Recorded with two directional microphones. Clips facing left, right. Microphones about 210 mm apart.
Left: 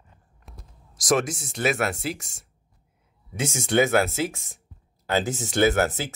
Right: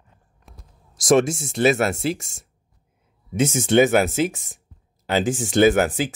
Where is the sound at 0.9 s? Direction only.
25° right (ahead or behind).